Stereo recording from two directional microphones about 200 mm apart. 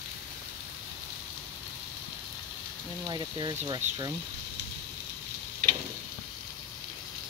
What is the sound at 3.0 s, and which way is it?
Speech, 20° right (ahead or behind).